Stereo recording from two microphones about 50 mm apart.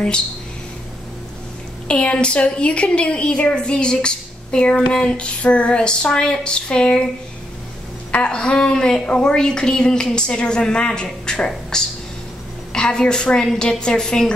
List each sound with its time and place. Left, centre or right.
1.9 s a woman's voice: left
8.1 s a woman's voice: centre